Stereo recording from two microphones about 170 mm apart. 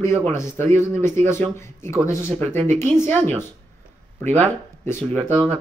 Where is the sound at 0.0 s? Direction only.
15° left (ahead or behind).